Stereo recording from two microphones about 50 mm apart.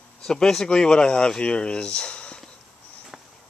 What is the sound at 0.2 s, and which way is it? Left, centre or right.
Speech, centre.